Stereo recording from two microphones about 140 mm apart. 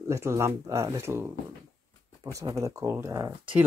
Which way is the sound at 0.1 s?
20° right (ahead or behind).